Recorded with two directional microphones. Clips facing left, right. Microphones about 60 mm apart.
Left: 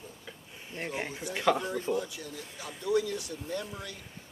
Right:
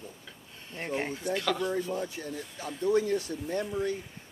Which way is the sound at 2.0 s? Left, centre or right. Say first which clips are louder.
Right 1 dB; right.